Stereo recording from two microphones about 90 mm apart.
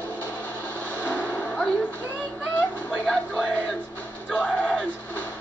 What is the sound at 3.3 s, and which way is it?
Music, 10° left (ahead or behind).